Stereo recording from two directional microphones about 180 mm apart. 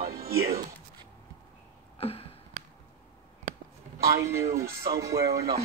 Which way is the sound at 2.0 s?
35° left (ahead or behind).